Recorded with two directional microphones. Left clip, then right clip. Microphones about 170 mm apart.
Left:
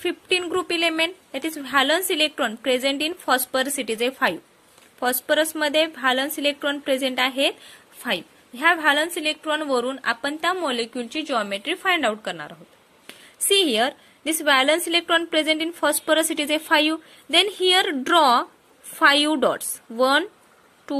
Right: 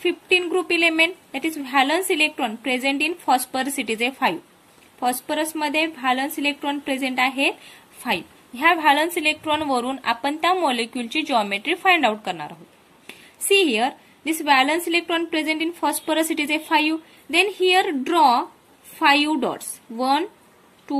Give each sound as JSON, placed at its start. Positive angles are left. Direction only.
{"t": 0.0, "sound": "a woman's voice", "side_deg": 45}
{"t": 13.6, "sound": "a woman's voice", "side_deg": 50}